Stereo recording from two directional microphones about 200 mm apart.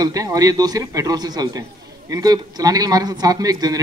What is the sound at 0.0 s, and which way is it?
Speech, 20° right (ahead or behind).